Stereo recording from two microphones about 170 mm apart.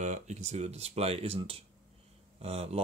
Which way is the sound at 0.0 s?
45° right (ahead or behind).